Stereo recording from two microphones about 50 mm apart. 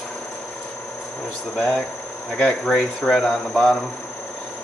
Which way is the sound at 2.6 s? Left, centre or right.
Centre.